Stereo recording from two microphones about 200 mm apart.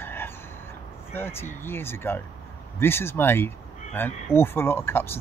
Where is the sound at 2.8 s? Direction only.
10° left (ahead or behind).